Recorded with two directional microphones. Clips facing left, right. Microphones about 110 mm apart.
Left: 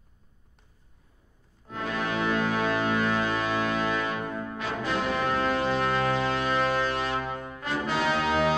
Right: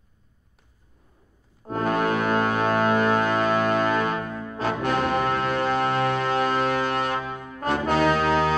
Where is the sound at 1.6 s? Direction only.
45° right (ahead or behind).